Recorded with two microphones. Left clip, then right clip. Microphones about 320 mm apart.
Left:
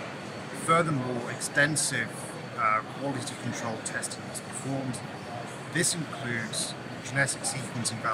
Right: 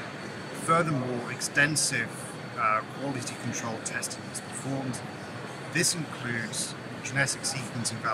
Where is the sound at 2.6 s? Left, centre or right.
Centre.